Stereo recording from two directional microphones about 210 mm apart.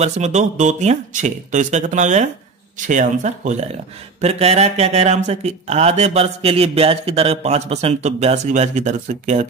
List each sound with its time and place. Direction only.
0.0 s speech: 35° right (ahead or behind)